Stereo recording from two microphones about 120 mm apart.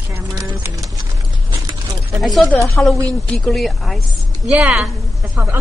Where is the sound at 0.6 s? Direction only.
25° right (ahead or behind).